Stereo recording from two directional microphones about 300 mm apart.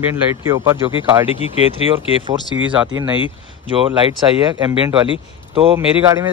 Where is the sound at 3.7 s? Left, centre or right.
Centre.